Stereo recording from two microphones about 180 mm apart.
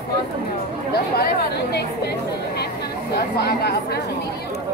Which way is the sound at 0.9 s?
65° left (ahead or behind).